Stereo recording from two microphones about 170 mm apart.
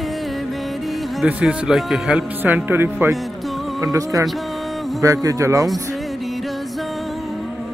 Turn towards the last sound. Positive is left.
turn(degrees=0)  # may be behind; listen again after turning